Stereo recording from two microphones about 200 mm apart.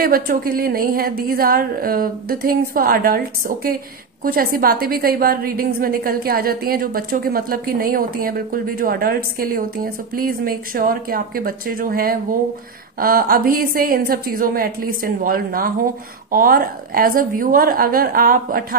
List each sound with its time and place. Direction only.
0.0 s a woman's voice: 45° right (ahead or behind)